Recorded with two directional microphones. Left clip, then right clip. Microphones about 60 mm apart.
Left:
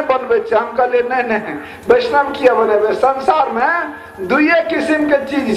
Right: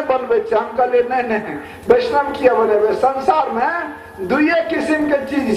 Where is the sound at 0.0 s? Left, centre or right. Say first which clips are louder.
Left 2 dB; left.